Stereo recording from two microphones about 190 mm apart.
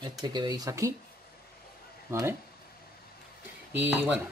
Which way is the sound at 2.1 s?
15° right (ahead or behind).